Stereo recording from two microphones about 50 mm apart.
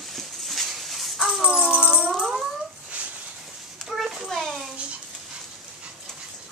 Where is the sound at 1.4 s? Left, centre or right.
Centre.